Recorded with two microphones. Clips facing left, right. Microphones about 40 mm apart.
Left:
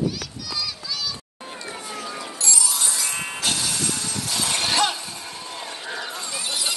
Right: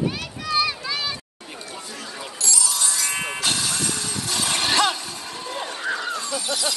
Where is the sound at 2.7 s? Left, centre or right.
Centre.